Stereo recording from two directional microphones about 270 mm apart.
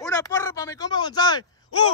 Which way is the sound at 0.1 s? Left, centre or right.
Centre.